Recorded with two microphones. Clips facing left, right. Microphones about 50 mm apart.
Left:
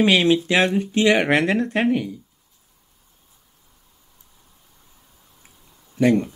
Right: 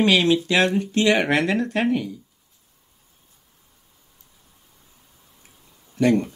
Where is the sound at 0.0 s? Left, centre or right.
Centre.